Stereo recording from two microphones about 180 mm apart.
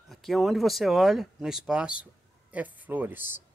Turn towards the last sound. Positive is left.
turn(degrees=-10)  # may be behind; listen again after turning